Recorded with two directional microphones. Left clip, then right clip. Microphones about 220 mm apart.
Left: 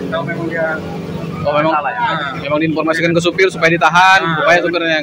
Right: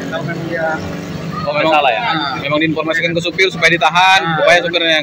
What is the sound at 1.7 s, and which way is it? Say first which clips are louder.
Speech: right 4 dB; 50° right (ahead or behind).